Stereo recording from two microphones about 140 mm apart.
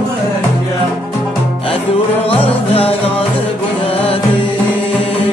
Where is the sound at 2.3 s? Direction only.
45° left (ahead or behind).